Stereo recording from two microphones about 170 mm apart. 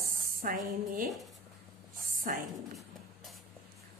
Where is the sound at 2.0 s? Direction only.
55° right (ahead or behind).